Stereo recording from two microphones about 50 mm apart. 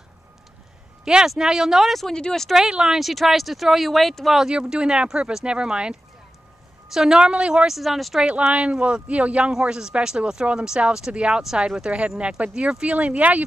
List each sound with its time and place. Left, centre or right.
1.0 s speech: centre
2.0 s speech: centre
2.5 s speech: centre
4.4 s speech: centre
7.7 s speech: centre
8.2 s speech: centre
9.5 s speech: centre